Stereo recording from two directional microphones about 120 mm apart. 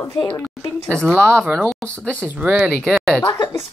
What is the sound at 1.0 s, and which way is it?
Speech, 10° left (ahead or behind).